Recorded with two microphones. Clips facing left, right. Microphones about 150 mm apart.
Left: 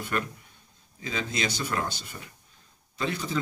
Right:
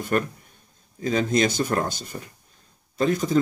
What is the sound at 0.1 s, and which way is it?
A man's voice, 45° right (ahead or behind).